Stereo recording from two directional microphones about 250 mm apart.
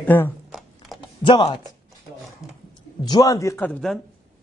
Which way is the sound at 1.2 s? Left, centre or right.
Centre.